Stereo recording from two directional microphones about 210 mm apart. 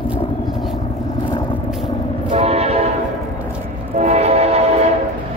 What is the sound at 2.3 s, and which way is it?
Train, 30° right (ahead or behind).